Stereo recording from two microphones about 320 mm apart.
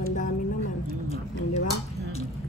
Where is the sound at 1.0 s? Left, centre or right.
Left.